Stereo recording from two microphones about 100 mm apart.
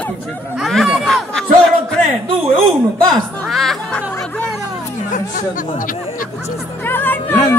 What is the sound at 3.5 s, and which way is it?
Music, centre (ahead or behind).